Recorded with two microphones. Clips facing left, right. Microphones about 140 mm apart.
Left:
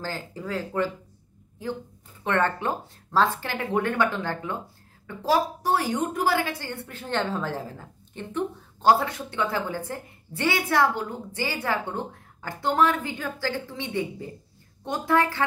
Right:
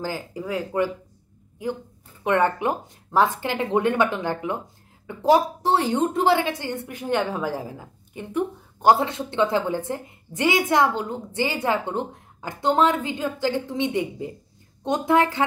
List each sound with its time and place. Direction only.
0.0 s a woman's voice: 15° right (ahead or behind)